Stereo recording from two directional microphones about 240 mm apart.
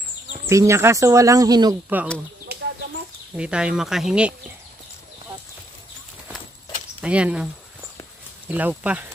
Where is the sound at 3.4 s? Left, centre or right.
Centre.